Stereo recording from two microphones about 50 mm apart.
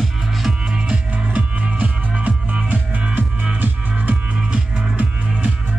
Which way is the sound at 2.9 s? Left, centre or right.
Right.